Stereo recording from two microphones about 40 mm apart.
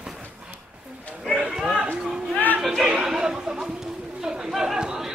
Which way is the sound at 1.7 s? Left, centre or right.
Right.